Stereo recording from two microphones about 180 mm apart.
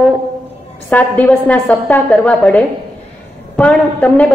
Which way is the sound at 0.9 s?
10° left (ahead or behind).